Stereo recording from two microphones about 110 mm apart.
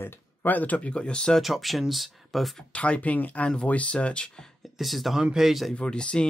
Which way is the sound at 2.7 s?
10° left (ahead or behind).